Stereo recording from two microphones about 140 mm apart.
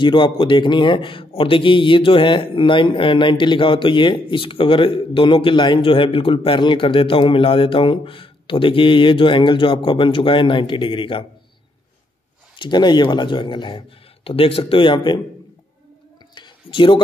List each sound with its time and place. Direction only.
0.0 s speech: 35° left (ahead or behind)
12.5 s speech: 35° left (ahead or behind)
16.3 s a sound: 35° left (ahead or behind)